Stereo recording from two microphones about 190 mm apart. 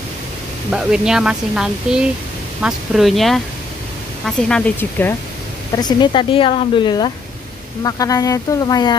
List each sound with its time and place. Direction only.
0.7 s speech: 5° right (ahead or behind)
5.8 s speech: 25° left (ahead or behind)